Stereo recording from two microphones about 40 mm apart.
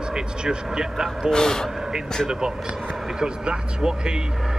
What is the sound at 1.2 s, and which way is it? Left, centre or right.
Speech, centre.